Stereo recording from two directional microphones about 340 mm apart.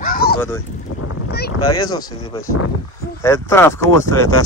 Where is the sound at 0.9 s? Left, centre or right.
Left.